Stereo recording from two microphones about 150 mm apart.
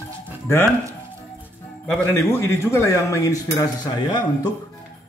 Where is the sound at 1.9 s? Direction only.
15° left (ahead or behind).